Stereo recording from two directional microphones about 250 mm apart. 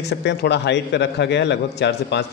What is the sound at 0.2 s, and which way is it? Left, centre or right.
A man's voice, left.